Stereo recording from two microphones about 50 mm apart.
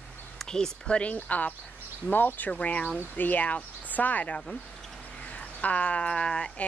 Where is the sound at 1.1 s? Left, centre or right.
Left.